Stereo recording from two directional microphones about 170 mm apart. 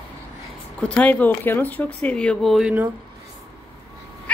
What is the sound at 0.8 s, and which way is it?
Speech, 10° left (ahead or behind).